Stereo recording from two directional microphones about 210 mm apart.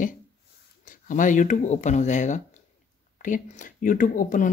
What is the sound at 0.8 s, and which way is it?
Speech, 40° left (ahead or behind).